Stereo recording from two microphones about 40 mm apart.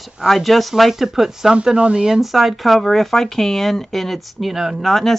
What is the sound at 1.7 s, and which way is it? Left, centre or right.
Speech, right.